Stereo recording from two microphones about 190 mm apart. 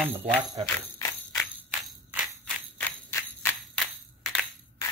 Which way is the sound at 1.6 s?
5° right (ahead or behind).